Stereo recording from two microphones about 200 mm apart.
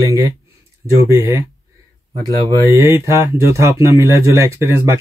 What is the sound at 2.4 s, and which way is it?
Speech, 15° right (ahead or behind).